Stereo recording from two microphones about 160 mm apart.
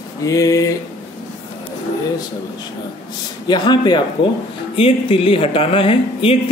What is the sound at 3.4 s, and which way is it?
Speech, 25° left (ahead or behind).